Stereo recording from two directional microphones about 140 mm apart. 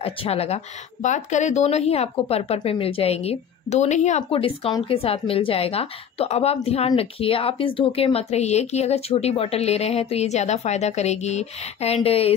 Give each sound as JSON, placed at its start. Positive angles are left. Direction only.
{"t": 0.0, "sound": "a woman's voice", "side_deg": 45}
{"t": 1.0, "sound": "a woman's voice", "side_deg": 60}
{"t": 4.8, "sound": "a woman's voice", "side_deg": 45}